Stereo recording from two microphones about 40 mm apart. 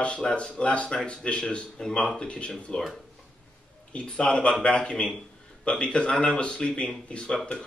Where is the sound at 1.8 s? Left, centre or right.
Centre.